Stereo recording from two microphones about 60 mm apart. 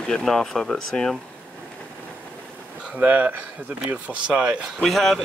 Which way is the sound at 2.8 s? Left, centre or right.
Right.